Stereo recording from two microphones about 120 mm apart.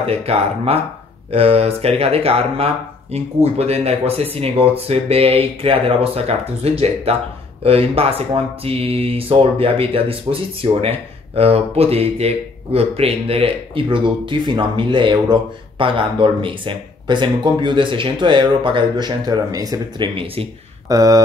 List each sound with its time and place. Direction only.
0.0 s speech: 55° right (ahead or behind); by 20.1 s 30° right (ahead or behind)
20.2 s speech: 50° right (ahead or behind)
20.9 s speech: 30° right (ahead or behind)